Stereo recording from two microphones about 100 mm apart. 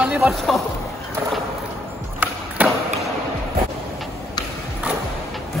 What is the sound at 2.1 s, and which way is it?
Skateboard, 15° right (ahead or behind).